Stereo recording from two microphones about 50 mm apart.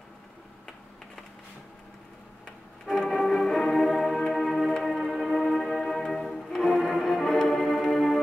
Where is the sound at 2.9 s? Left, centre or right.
Centre.